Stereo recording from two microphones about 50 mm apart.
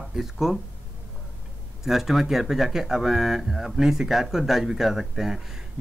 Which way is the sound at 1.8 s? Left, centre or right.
Centre.